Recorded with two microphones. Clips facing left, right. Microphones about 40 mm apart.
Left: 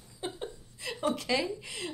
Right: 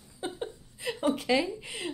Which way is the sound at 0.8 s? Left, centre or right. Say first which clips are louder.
Right 3 dB; centre.